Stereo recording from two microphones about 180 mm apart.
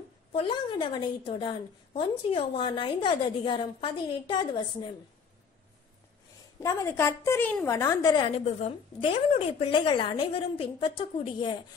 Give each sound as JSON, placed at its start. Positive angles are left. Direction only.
{"t": 0.3, "sound": "a woman's voice", "side_deg": 30}
{"t": 6.6, "sound": "a woman's voice", "side_deg": 15}